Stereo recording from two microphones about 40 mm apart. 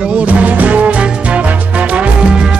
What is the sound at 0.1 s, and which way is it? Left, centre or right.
Music, right.